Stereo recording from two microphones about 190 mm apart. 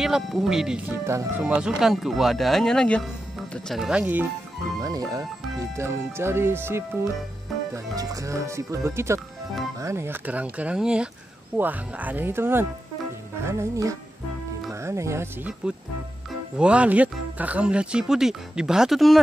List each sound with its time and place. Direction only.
0.0 s speech: centre (ahead or behind)